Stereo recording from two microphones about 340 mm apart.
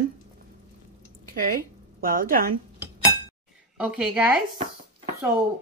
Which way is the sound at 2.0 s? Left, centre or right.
Right.